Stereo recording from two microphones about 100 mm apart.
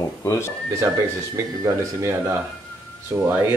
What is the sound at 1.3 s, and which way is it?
Speech, 35° right (ahead or behind).